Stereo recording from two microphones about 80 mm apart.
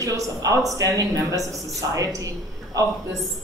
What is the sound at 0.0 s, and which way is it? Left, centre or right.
Speech, right.